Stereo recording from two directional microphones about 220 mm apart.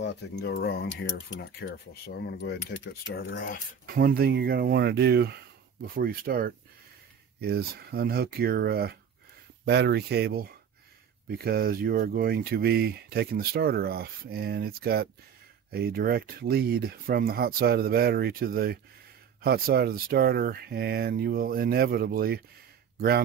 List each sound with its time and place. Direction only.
0.0 s speech: 50° left (ahead or behind)
3.8 s speech: 45° right (ahead or behind)